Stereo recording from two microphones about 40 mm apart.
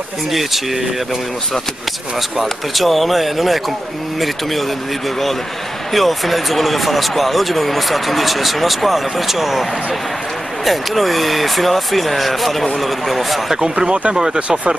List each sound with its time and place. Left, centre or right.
0.3 s speech: centre
2.4 s speech: centre
5.9 s speech: centre
13.6 s speech: right